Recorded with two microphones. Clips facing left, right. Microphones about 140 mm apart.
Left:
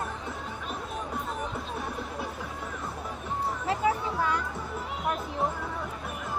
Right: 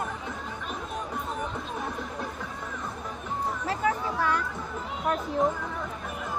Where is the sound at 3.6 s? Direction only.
20° left (ahead or behind).